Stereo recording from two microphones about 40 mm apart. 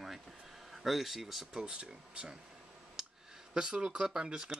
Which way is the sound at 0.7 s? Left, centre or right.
Centre.